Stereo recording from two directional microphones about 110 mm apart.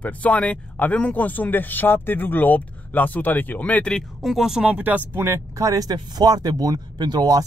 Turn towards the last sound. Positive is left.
turn(degrees=-40)  # may be behind; listen again after turning